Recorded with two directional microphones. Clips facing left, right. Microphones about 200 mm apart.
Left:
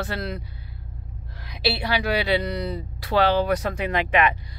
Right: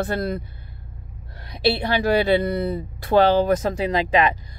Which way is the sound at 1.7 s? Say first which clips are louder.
Right 4 dB; 45° right (ahead or behind).